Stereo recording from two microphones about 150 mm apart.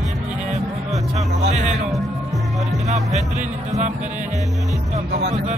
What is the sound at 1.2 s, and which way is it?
Speech, 50° right (ahead or behind).